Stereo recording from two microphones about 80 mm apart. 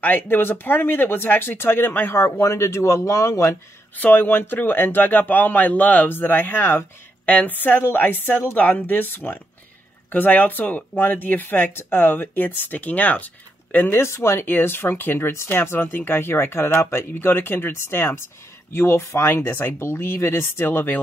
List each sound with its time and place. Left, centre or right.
0.0 s speech: left
4.0 s speech: left